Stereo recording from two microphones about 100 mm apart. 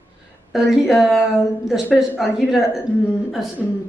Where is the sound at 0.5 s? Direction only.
5° right (ahead or behind).